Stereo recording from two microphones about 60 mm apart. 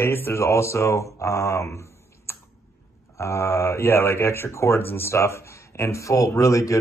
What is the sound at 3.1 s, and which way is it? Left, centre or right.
Speech, left.